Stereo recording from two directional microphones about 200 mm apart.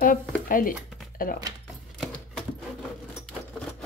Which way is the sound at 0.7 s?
Centre (ahead or behind).